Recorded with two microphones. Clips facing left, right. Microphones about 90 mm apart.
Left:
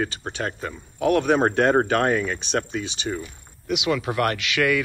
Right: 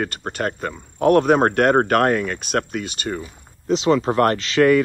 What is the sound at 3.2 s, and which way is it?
Speech, 35° right (ahead or behind).